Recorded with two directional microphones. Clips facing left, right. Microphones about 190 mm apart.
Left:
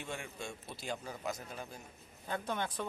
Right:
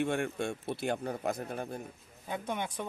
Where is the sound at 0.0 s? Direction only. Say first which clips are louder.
Right 12 dB; 60° right (ahead or behind).